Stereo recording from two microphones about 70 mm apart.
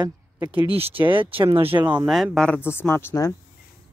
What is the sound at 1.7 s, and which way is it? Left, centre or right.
Speech, right.